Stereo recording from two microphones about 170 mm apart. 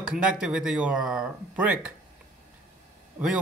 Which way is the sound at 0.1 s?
5° right (ahead or behind).